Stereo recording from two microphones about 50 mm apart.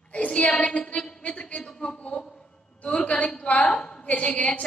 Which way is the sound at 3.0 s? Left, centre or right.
Left.